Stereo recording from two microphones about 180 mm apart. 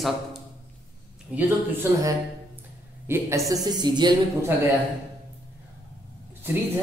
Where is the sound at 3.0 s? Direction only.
15° right (ahead or behind).